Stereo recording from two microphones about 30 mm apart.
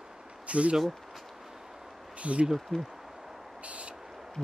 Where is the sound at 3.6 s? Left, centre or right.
Right.